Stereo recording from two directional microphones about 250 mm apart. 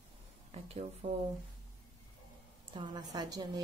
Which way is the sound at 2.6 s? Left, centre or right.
Centre.